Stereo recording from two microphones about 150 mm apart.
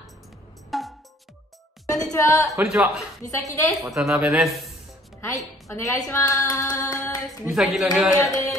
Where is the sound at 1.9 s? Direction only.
25° left (ahead or behind).